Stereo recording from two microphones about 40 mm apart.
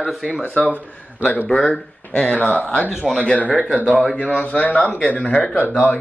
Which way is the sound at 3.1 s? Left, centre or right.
Left.